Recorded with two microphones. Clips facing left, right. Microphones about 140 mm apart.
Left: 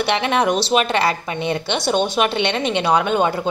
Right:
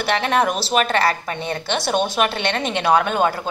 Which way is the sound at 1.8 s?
10° right (ahead or behind).